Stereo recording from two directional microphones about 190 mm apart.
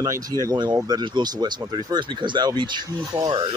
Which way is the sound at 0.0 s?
20° right (ahead or behind).